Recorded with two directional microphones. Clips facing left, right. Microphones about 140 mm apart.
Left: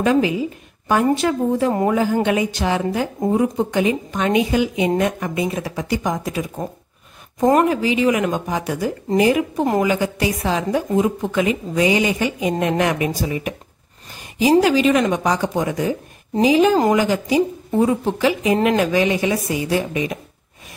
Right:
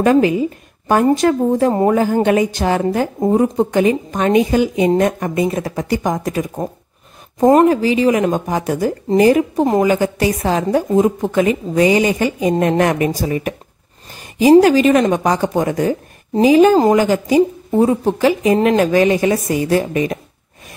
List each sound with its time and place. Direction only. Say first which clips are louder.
0.0 s a woman's voice: right 5 dB; 50° right (ahead or behind)
7.3 s a woman's voice: right 5 dB; 30° right (ahead or behind); by 20.2 s 45° right (ahead or behind)